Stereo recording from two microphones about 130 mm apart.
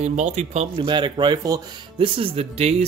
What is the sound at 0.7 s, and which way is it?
Speech, 40° right (ahead or behind).